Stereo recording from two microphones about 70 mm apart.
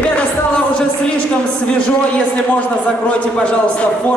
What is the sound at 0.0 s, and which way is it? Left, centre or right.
Music, centre.